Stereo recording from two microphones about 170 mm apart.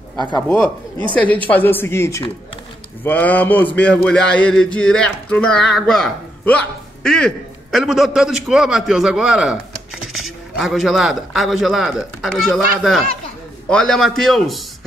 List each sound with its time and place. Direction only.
0.1 s speech: 25° left (ahead or behind)
1.1 s a man's voice: 10° left (ahead or behind)